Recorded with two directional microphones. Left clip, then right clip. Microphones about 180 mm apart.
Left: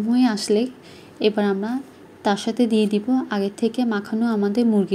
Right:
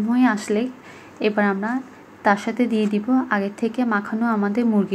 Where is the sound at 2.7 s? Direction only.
5° left (ahead or behind).